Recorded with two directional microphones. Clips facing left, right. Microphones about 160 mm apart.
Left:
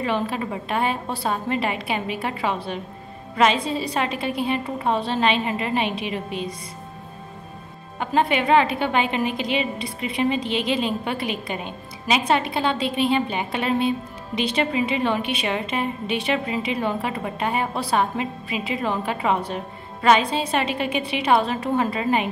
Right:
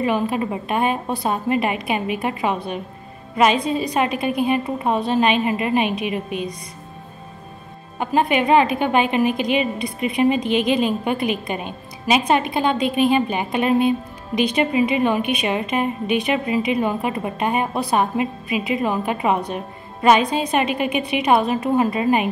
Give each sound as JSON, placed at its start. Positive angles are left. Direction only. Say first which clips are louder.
{"t": 0.0, "sound": "a woman's voice", "louder": "right 4 dB", "side_deg": -15}
{"t": 8.0, "sound": "a woman's voice", "louder": "right 2 dB", "side_deg": -15}